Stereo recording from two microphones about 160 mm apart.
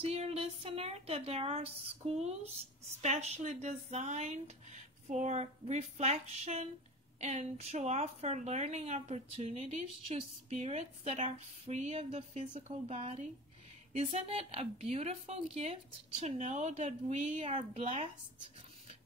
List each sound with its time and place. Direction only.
0.0 s a woman's voice: 40° right (ahead or behind)